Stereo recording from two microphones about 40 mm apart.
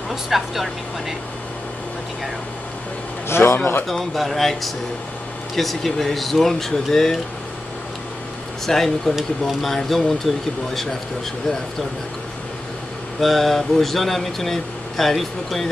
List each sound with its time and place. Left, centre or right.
0.1 s speech: centre
3.3 s a man's voice: left
4.0 s speech: centre
8.6 s speech: centre
9.7 s speech: centre
13.2 s speech: centre